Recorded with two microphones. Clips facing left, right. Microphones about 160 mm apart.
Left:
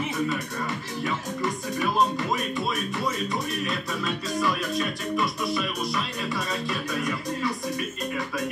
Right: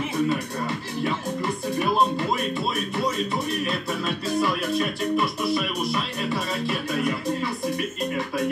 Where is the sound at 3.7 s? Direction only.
30° right (ahead or behind).